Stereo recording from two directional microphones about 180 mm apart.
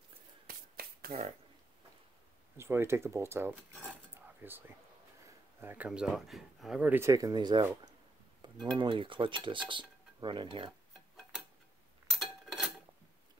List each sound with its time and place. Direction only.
0.5 s finger snapping: 55° right (ahead or behind)
2.5 s speech: 15° right (ahead or behind)
3.7 s dishes: 5° right (ahead or behind)
5.2 s speech: 10° right (ahead or behind)
8.4 s cutlery: 25° right (ahead or behind)
12.1 s a sound: centre (ahead or behind)